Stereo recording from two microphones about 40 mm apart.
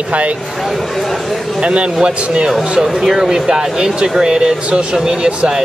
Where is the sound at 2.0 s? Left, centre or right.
Centre.